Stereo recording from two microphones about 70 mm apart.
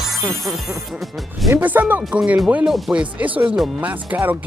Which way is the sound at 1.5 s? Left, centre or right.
Right.